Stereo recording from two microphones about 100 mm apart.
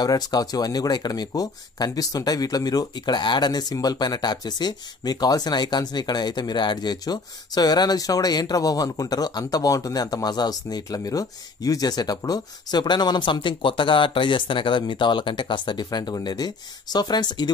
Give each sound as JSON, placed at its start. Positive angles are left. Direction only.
{"t": 0.0, "sound": "speech", "side_deg": 40}